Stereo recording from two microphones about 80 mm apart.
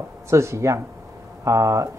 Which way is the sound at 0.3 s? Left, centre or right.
Right.